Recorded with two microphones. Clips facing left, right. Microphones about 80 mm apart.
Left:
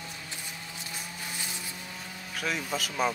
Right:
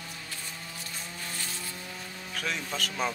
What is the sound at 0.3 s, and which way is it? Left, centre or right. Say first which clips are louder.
Music: even; centre.